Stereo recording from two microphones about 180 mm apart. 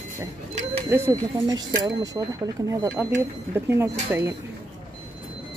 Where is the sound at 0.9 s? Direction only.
15° right (ahead or behind).